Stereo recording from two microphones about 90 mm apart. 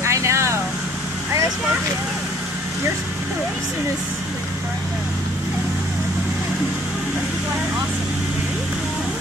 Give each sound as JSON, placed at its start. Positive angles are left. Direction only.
{"t": 0.0, "sound": "vehicle", "side_deg": -30}